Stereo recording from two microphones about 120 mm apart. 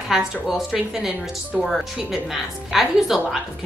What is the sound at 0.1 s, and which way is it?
A woman's voice, 5° right (ahead or behind).